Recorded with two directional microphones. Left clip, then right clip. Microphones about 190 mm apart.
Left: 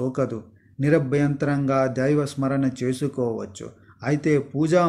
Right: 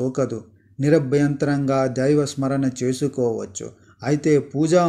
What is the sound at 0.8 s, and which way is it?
Speech, 45° right (ahead or behind).